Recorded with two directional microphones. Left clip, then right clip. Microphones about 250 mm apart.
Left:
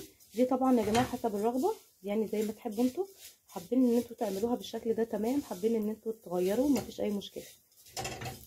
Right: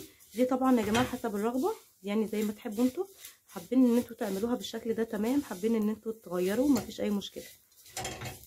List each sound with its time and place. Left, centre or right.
0.4 s speech: centre